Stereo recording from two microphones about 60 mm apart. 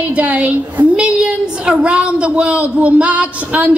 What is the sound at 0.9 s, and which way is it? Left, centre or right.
A woman's voice, centre.